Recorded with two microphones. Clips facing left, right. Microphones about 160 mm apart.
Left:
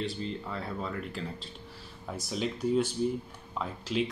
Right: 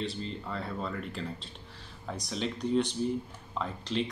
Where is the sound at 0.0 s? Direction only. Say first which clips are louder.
Left 1 dB; centre (ahead or behind).